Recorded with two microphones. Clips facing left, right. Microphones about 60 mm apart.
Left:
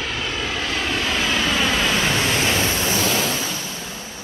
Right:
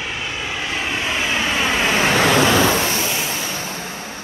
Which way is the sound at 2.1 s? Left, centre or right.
Right.